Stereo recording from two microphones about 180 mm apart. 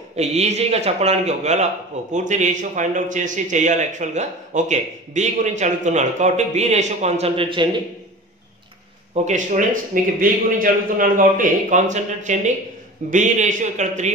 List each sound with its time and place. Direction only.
0.1 s a man's voice: 35° right (ahead or behind)
9.1 s a man's voice: 40° right (ahead or behind)